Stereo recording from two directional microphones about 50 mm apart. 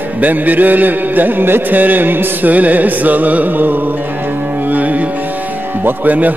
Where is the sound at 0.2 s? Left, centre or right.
Right.